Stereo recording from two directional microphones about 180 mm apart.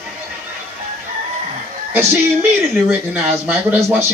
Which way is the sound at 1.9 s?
10° right (ahead or behind).